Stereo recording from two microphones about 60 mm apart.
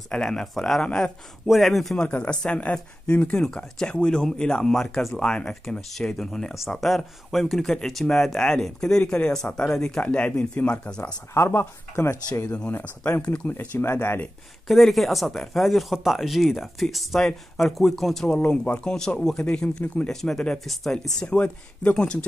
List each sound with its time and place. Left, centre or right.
0.1 s speech: centre
0.8 s speech: centre
1.4 s speech: centre
2.2 s speech: centre
11.3 s speech: left
12.4 s speech: centre
13.7 s speech: left
14.7 s speech: centre
20.9 s speech: centre